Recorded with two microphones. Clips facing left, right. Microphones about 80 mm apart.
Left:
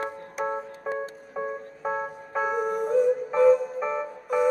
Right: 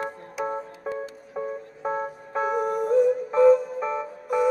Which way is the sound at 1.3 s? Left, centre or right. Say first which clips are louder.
Right 1 dB; centre.